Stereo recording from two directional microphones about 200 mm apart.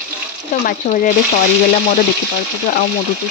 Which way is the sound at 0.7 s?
45° left (ahead or behind).